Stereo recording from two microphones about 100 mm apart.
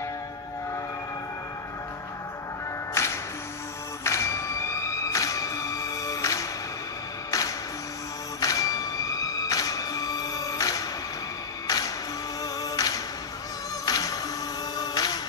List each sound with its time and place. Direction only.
3.0 s music: 25° left (ahead or behind); by 15.1 s 40° left (ahead or behind)